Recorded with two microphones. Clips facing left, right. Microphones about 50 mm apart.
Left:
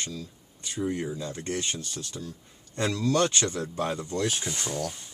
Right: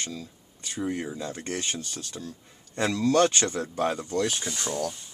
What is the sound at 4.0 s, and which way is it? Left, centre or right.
Speech, centre.